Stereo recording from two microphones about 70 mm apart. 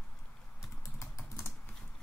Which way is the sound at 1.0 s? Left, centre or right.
Left.